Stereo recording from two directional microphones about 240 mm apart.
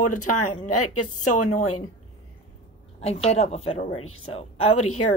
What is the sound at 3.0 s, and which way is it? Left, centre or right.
Speech, left.